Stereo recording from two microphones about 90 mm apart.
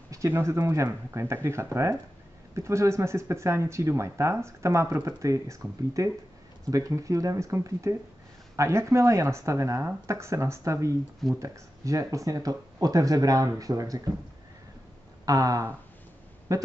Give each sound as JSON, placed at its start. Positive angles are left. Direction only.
{"t": 0.3, "sound": "speech", "side_deg": -35}
{"t": 15.2, "sound": "speech", "side_deg": -40}